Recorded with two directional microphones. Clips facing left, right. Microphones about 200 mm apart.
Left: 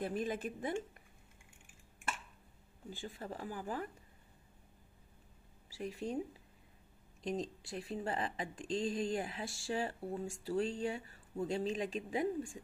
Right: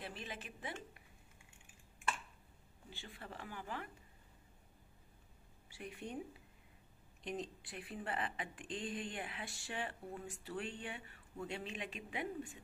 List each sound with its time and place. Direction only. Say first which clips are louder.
0.0 s a woman's voice: left 11 dB; 45° left (ahead or behind)
3.0 s a woman's voice: left 7 dB; 40° left (ahead or behind)
5.8 s a woman's voice: left 7 dB; 35° left (ahead or behind)
7.2 s a woman's voice: left 5 dB; 35° left (ahead or behind)